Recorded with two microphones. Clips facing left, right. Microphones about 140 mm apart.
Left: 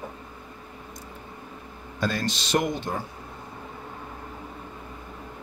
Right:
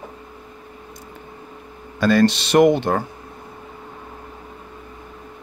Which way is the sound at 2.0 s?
75° right (ahead or behind).